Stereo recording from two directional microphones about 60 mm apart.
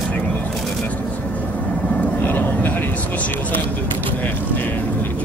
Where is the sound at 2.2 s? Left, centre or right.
Left.